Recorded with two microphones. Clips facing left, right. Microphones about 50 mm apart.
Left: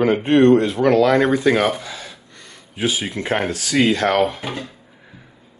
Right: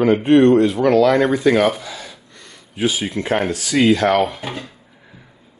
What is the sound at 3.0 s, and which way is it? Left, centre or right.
Speech, centre.